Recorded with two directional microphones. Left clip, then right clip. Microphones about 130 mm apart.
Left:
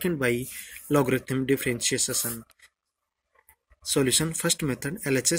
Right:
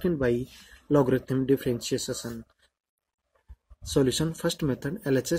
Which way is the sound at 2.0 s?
40° left (ahead or behind).